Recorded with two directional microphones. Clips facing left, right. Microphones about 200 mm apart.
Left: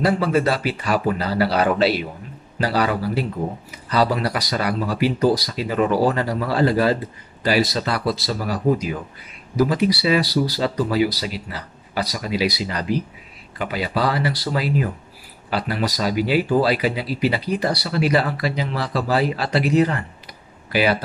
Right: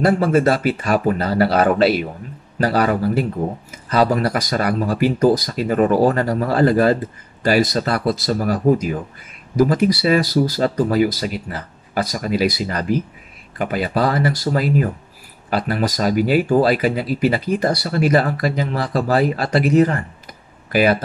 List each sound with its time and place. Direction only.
0.0 s speech: 50° right (ahead or behind)